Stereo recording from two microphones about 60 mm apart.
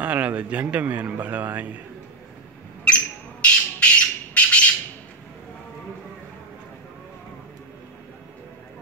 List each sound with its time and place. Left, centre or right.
0.0 s a man's voice: right
2.8 s squawk: centre